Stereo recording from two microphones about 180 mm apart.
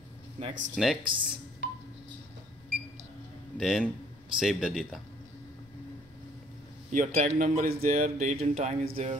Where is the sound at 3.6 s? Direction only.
Centre (ahead or behind).